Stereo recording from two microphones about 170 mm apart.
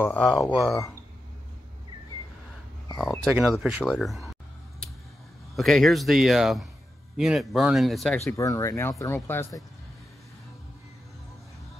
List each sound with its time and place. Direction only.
0.0 s speech: 5° left (ahead or behind)
3.3 s speech: centre (ahead or behind)
5.6 s speech: centre (ahead or behind)
8.3 s speech: 20° left (ahead or behind)